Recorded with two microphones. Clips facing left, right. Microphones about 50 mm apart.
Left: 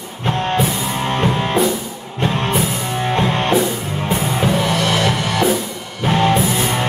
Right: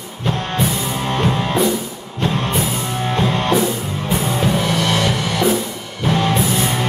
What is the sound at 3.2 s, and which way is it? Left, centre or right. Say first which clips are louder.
Music: even; left.